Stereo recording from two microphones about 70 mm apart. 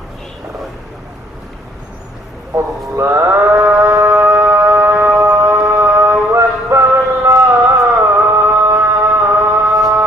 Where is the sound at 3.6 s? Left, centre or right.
Right.